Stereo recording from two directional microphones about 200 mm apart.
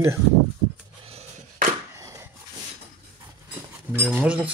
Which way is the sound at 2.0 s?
15° right (ahead or behind).